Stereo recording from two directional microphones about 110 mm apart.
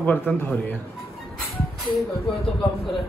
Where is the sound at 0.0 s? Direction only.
15° left (ahead or behind).